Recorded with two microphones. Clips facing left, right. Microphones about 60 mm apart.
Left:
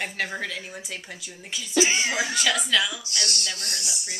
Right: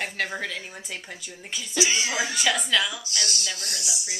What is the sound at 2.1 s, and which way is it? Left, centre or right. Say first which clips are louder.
Speech: even; centre.